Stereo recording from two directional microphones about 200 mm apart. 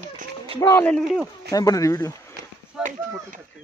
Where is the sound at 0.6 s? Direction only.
10° left (ahead or behind).